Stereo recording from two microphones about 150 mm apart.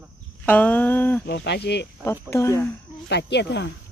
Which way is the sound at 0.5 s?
10° left (ahead or behind).